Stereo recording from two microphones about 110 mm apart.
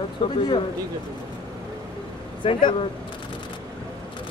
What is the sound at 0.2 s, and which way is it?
Speech, 55° left (ahead or behind).